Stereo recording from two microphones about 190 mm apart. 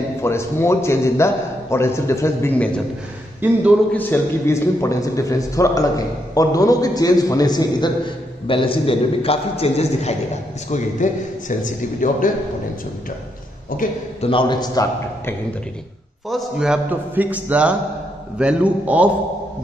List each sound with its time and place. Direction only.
0.2 s a man's voice: 15° left (ahead or behind)
3.4 s a man's voice: 10° right (ahead or behind)
3.9 s a man's voice: 10° left (ahead or behind); by 12.3 s 45° left (ahead or behind)
14.2 s a man's voice: 25° left (ahead or behind)
16.3 s a man's voice: centre (ahead or behind)